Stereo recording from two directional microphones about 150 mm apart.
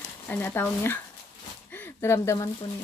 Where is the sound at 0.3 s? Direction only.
10° left (ahead or behind).